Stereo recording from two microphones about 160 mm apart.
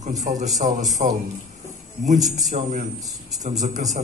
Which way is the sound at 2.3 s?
50° right (ahead or behind).